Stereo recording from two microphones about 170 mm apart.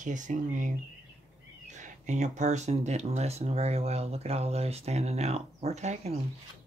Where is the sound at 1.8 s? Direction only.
45° right (ahead or behind).